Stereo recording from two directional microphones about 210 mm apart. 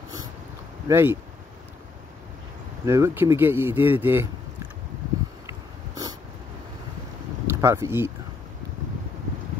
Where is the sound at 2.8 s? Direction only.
15° right (ahead or behind).